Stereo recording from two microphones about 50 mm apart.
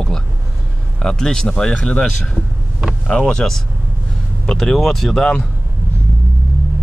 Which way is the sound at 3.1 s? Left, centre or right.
Centre.